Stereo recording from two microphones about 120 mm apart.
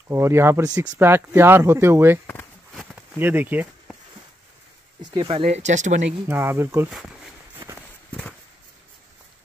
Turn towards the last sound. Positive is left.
turn(degrees=-20)  # may be behind; listen again after turning